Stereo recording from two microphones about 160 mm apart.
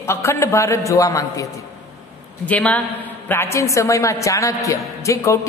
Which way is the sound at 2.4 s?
10° left (ahead or behind).